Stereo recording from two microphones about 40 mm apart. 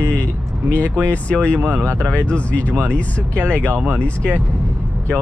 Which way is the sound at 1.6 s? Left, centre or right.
Right.